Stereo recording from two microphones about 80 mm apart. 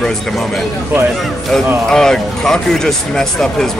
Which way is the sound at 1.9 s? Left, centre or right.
Centre.